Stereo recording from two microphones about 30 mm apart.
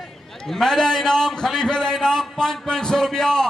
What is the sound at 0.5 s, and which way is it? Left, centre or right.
A man's voice, centre.